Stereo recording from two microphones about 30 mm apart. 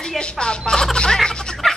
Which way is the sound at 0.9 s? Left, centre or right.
Left.